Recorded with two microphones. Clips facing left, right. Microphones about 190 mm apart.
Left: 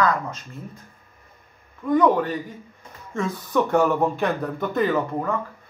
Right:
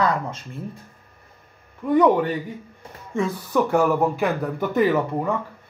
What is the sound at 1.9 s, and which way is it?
Speech, 15° right (ahead or behind).